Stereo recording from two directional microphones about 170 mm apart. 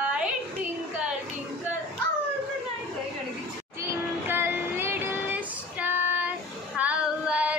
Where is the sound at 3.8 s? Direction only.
15° right (ahead or behind).